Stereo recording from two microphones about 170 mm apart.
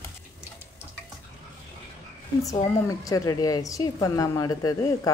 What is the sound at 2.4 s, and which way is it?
Speech, 20° left (ahead or behind).